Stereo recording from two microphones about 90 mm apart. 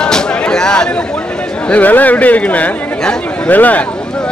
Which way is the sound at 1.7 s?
20° left (ahead or behind).